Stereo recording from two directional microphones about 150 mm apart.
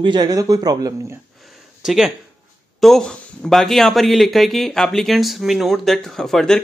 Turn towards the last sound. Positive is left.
turn(degrees=5)  # may be behind; listen again after turning